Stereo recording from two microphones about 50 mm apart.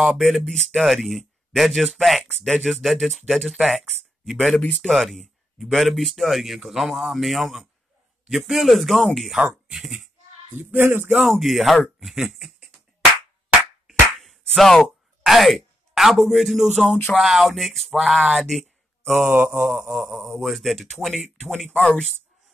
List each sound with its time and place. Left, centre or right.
0.0 s speech: centre
2.6 s speech: centre
10.5 s speech: right
11.2 s speech: centre
13.8 s slap: centre
16.0 s speech: centre
19.3 s speech: right
19.8 s mantra: right
20.1 s speech: centre